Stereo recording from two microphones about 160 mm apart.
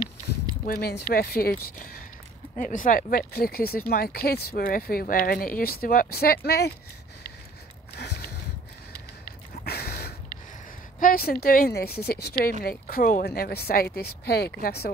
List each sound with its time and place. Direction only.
0.7 s speech: 75° left (ahead or behind)
2.5 s speech: 55° left (ahead or behind); by 6.7 s 80° left
7.9 s a sound: 90° left
9.7 s a sound: 80° left
11.0 s speech: 65° left (ahead or behind)
12.6 s speech: 60° left (ahead or behind); by 14.9 s 85° left